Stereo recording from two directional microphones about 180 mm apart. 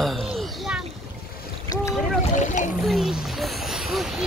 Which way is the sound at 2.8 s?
Centre (ahead or behind).